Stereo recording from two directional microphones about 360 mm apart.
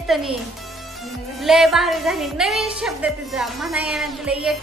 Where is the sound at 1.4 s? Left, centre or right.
Centre.